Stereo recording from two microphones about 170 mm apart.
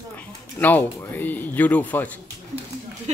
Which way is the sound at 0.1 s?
10° left (ahead or behind).